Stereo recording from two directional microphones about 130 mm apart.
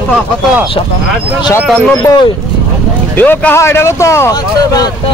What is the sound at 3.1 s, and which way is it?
Speech, 15° left (ahead or behind).